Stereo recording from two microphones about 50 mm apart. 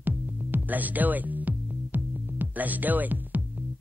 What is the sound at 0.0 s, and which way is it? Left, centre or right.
Music, right.